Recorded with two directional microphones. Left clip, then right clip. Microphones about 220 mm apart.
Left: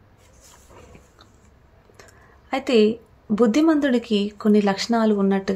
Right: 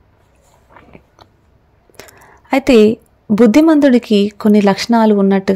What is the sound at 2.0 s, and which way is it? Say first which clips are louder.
Speech: right 11 dB; 40° right (ahead or behind).